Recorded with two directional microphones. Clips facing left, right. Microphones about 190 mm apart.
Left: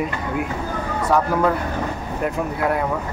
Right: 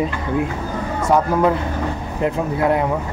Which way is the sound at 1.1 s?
20° right (ahead or behind).